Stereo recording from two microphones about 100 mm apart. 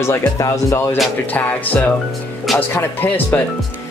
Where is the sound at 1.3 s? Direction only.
15° left (ahead or behind).